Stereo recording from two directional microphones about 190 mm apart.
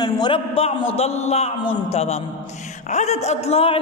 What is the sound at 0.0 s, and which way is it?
A woman's voice, 25° left (ahead or behind).